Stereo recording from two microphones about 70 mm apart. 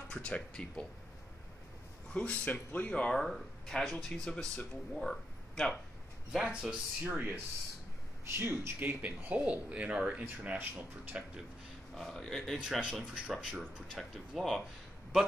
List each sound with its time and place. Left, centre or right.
0.1 s speech: centre
2.1 s speech: left
2.9 s speech: centre
3.2 s speech: centre
6.3 s speech: centre
8.4 s speech: right
8.7 s speech: right
11.9 s speech: centre
12.8 s speech: centre